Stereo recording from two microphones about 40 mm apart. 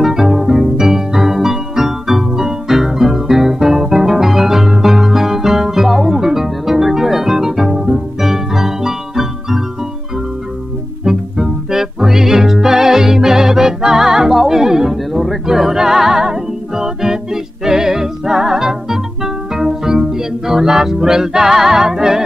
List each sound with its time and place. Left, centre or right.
0.0 s music: centre
11.1 s music: centre